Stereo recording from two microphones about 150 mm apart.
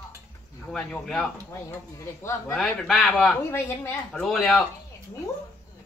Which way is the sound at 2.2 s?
15° left (ahead or behind).